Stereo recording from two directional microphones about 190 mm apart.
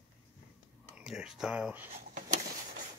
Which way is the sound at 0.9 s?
5° right (ahead or behind).